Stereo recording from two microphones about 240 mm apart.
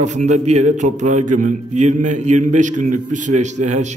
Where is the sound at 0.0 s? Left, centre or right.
Right.